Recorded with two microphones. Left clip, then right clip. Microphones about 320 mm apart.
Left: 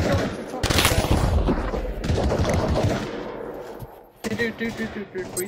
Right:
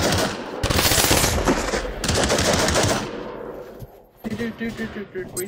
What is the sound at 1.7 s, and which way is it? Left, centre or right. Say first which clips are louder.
Fusillade: right 4 dB; right.